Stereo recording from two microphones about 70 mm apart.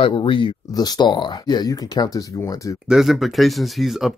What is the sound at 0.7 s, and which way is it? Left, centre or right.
Speech, left.